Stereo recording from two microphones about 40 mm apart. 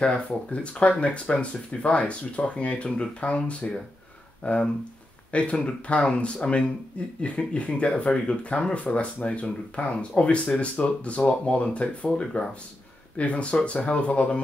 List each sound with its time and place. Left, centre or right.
0.0 s speech: left